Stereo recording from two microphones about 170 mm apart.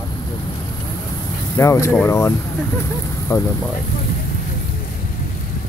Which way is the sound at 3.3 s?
20° left (ahead or behind).